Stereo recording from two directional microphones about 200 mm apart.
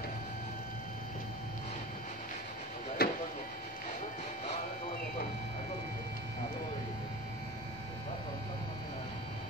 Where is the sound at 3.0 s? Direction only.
50° left (ahead or behind).